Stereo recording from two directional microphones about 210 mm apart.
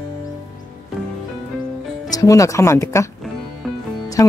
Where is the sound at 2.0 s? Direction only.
15° left (ahead or behind).